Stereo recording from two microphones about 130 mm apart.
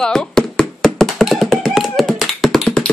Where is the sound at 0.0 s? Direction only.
5° left (ahead or behind).